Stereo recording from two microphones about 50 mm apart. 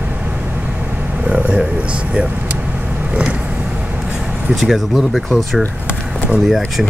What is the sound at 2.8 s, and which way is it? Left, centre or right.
Vehicle, right.